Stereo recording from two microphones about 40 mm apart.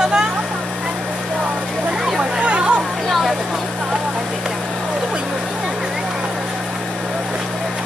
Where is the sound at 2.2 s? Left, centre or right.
Right.